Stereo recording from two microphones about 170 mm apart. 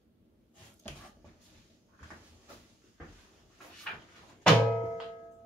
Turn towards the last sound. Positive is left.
turn(degrees=5)  # may be behind; listen again after turning